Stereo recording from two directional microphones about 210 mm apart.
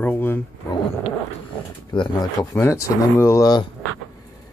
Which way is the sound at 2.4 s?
10° left (ahead or behind).